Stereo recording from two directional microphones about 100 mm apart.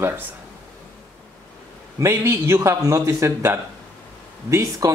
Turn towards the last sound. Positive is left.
turn(degrees=-35)  # may be behind; listen again after turning